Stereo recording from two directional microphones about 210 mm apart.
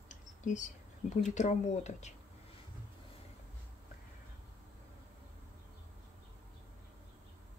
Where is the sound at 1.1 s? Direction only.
35° left (ahead or behind).